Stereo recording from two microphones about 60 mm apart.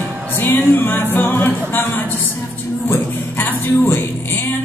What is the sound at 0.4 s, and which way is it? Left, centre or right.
Music, left.